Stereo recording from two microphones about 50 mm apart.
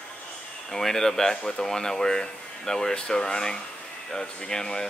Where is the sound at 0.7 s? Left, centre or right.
Centre.